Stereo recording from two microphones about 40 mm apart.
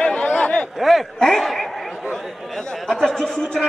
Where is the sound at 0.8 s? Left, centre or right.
Centre.